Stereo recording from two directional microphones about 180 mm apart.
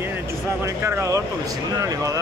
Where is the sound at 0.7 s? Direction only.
15° right (ahead or behind).